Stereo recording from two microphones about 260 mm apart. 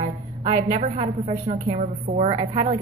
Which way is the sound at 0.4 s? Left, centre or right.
Right.